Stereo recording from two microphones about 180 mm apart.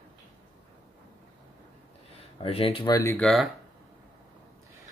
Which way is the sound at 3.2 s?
Centre (ahead or behind).